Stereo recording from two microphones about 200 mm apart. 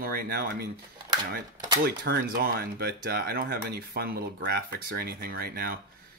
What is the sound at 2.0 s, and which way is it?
Speech, 50° right (ahead or behind).